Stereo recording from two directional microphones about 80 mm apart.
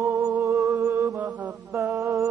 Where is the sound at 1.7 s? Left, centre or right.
Right.